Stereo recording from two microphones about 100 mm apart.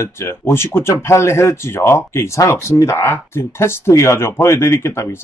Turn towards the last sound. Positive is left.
turn(degrees=25)  # may be behind; listen again after turning